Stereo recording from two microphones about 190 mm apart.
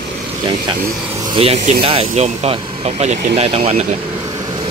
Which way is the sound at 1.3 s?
30° right (ahead or behind).